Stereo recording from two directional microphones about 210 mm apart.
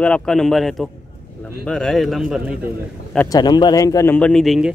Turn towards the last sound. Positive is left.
turn(degrees=0)  # may be behind; listen again after turning